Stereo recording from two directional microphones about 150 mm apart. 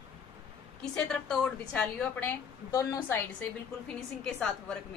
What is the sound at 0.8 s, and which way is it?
A woman's voice, 5° left (ahead or behind).